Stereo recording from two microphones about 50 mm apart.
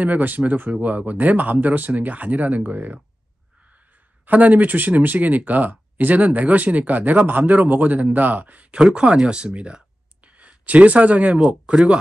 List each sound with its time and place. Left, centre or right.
0.0 s speech: right
4.3 s speech: right
8.7 s speech: centre